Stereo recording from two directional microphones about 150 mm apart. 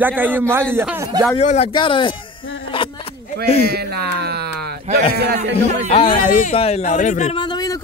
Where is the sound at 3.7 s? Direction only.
90° right.